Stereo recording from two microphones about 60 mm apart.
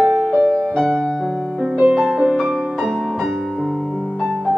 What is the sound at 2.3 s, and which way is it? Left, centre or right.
Music, centre.